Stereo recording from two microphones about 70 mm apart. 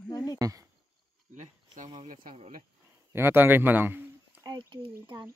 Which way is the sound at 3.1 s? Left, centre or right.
Right.